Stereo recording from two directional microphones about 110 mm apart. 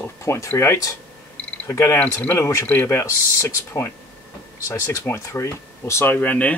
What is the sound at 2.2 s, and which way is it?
Speech, 20° left (ahead or behind).